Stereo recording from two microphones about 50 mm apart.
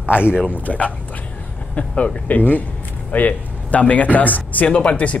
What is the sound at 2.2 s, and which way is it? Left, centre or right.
Speech, left.